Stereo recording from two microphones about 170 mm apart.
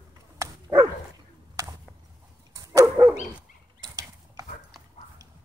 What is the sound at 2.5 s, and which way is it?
Dog, 20° right (ahead or behind).